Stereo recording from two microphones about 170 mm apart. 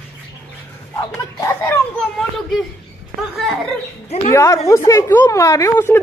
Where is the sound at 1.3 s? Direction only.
20° left (ahead or behind).